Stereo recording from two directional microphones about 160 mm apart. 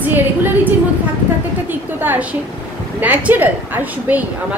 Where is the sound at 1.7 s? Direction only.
10° right (ahead or behind).